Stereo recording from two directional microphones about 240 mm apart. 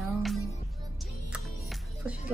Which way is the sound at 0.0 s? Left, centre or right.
Centre.